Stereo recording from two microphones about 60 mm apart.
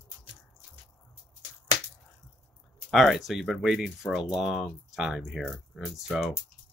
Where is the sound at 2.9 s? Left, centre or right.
Centre.